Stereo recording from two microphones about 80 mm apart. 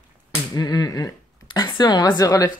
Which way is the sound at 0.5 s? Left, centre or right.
Left.